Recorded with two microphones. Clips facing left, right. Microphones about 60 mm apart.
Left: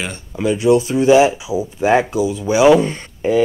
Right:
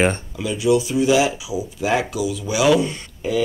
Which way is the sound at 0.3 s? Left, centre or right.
Left.